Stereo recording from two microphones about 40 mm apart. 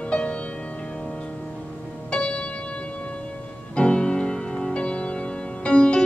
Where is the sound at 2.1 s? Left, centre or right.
Left.